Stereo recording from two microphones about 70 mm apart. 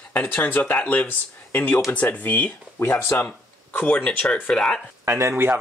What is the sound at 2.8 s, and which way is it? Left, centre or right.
Speech, left.